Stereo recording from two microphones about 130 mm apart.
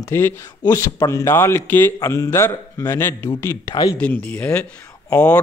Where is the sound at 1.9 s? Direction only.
25° left (ahead or behind).